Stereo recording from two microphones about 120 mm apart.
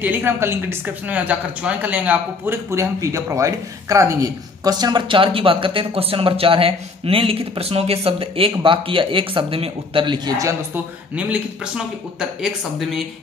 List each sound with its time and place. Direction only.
0.0 s a woman's voice: 15° right (ahead or behind); by 10.5 s 35° right (ahead or behind)
10.7 s speech: 10° right (ahead or behind)